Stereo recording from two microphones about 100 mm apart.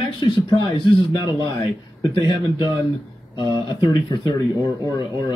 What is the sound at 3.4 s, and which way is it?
A man's voice, 50° left (ahead or behind).